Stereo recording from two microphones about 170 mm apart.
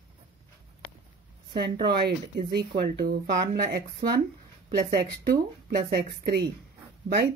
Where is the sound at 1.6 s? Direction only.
65° right (ahead or behind).